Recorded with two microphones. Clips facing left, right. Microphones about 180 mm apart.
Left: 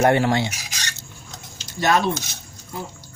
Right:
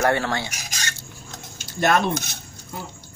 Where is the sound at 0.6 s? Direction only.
45° right (ahead or behind).